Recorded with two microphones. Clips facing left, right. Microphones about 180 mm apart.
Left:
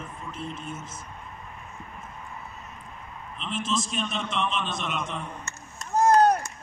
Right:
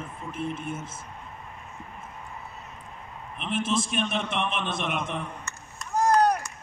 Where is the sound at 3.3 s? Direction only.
60° right (ahead or behind).